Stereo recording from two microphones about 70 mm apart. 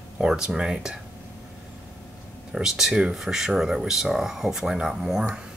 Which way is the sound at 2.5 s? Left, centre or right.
Centre.